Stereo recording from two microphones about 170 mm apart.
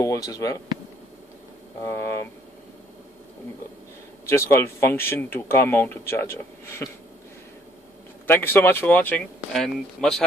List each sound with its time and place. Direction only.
0.0 s speech: 20° left (ahead or behind)
1.9 s speech: 15° left (ahead or behind)
4.3 s speech: 15° left (ahead or behind)
8.3 s speech: 10° left (ahead or behind)